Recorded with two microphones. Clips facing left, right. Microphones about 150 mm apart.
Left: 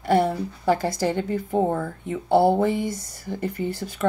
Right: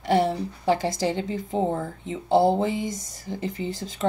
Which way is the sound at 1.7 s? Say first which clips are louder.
Left 2 dB; 20° right (ahead or behind).